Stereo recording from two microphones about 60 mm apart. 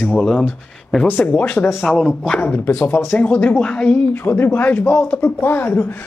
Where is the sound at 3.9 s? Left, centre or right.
Left.